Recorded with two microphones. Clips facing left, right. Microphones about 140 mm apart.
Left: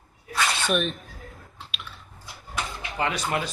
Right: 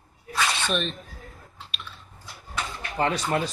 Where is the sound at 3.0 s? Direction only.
35° right (ahead or behind).